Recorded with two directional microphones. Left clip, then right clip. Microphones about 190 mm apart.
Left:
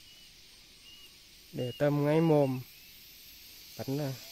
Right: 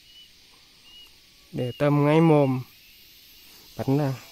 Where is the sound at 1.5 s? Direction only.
40° right (ahead or behind).